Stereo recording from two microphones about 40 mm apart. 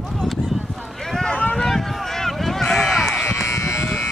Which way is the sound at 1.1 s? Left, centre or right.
Centre.